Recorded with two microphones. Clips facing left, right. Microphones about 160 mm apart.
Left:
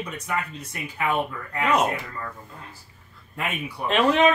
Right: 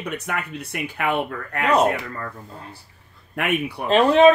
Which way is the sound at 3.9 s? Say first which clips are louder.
Right 5 dB; 35° right (ahead or behind).